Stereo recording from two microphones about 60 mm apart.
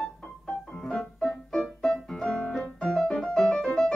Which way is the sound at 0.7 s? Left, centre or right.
Centre.